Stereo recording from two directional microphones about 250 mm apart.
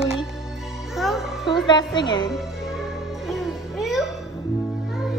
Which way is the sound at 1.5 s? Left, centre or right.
Centre.